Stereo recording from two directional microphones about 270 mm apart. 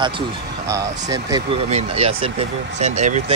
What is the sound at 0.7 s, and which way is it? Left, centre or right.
Speech, centre.